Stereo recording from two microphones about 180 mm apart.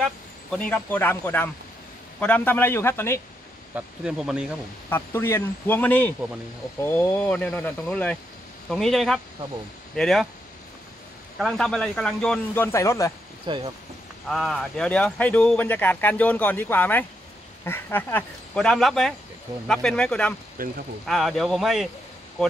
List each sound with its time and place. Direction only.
0.0 s speech: 5° left (ahead or behind)
3.7 s a man's voice: 5° right (ahead or behind)
4.8 s a man's voice: 10° left (ahead or behind)
11.3 s a man's voice: centre (ahead or behind)
13.5 s speech: 25° right (ahead or behind)
14.3 s a man's voice: centre (ahead or behind)
20.6 s speech: 50° right (ahead or behind)
21.1 s a man's voice: centre (ahead or behind)